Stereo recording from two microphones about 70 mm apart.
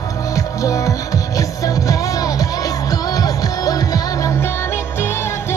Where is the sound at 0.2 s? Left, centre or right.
Left.